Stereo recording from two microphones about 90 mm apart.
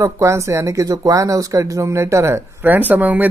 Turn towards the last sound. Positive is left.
turn(degrees=-20)  # may be behind; listen again after turning